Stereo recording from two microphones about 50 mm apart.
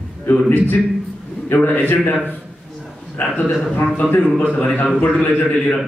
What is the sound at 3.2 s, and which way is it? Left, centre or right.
Speech, left.